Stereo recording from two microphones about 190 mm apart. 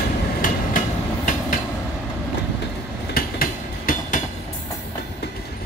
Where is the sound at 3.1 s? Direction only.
45° left (ahead or behind).